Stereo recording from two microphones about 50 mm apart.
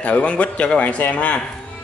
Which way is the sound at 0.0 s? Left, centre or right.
Left.